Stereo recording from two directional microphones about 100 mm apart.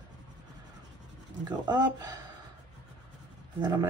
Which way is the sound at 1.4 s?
45° right (ahead or behind).